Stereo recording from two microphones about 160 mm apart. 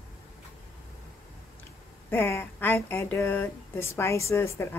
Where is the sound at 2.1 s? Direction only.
15° left (ahead or behind).